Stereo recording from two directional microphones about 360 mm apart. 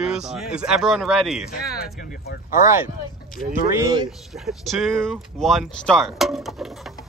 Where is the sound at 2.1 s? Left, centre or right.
Left.